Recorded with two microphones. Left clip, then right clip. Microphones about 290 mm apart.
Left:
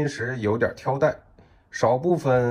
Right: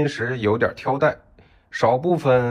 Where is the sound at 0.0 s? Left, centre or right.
Centre.